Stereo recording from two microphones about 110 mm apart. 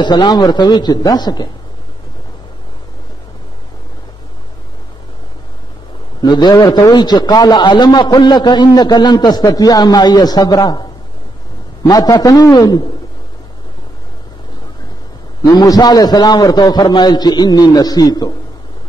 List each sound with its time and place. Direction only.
0.0 s a man's voice: 45° left (ahead or behind)
6.2 s a man's voice: 40° left (ahead or behind)
11.9 s a man's voice: 35° left (ahead or behind)
15.4 s a man's voice: 35° left (ahead or behind)